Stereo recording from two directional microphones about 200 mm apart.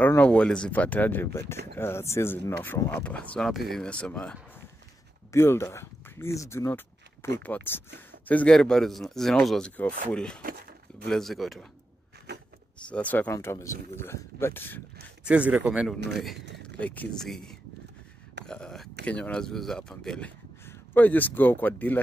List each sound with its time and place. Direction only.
0.0 s speech: 10° left (ahead or behind)
12.3 s vehicle: 60° right (ahead or behind)
12.8 s speech: 5° left (ahead or behind)
15.2 s speech: 5° right (ahead or behind)
16.8 s speech: 5° left (ahead or behind)